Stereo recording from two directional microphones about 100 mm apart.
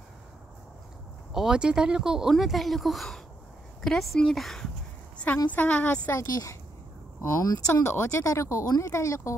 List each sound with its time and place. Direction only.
1.3 s speech: 5° right (ahead or behind)
5.1 s a sound: 15° left (ahead or behind)
5.5 s a woman's voice: 15° left (ahead or behind)
6.1 s a woman's voice: 35° left (ahead or behind)